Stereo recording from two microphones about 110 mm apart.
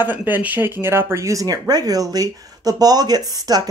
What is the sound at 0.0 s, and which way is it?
Speech, 15° right (ahead or behind).